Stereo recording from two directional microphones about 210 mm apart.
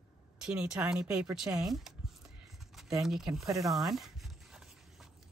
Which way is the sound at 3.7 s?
Centre (ahead or behind).